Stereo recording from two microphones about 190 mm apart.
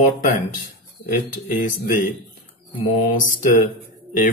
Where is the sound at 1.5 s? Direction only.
40° left (ahead or behind).